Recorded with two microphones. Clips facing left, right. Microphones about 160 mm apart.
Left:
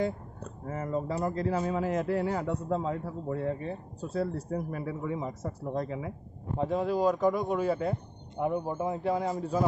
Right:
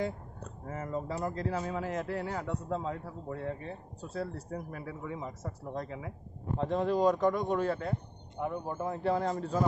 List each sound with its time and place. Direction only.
0.7 s a man's voice: 30° left (ahead or behind)
6.6 s a man's voice: 5° left (ahead or behind)